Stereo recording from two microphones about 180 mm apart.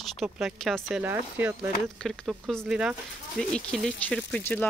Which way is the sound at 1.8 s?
Centre (ahead or behind).